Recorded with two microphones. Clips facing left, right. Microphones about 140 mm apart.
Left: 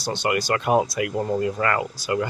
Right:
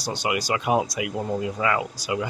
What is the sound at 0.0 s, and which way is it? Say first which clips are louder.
Speech: left 3 dB; 10° right (ahead or behind).